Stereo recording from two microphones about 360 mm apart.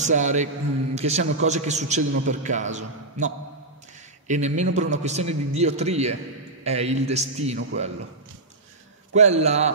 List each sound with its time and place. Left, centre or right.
0.0 s a man's voice: centre
9.1 s a man's voice: centre